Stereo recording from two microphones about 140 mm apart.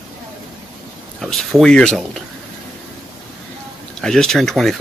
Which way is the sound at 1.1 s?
Centre (ahead or behind).